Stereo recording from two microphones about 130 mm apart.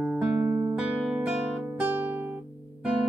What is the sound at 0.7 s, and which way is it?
Guitar, 10° right (ahead or behind).